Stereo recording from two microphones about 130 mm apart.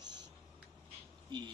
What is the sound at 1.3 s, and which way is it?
Speech, 35° right (ahead or behind).